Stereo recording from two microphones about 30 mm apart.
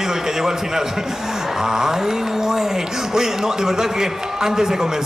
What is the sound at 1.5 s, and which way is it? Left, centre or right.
Speech, centre.